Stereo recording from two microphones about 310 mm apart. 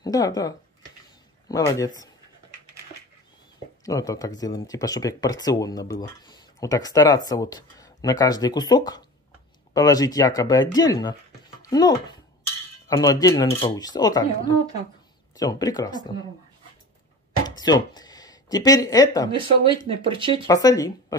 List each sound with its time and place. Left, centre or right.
0.0 s speech: centre
3.8 s speech: centre
15.3 s speech: centre
17.6 s speech: centre
19.3 s speech: centre
20.4 s speech: centre